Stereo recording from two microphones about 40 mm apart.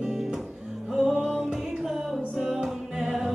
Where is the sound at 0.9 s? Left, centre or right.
Centre.